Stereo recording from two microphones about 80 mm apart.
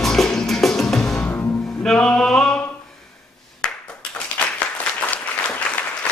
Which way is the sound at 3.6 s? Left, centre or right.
Centre.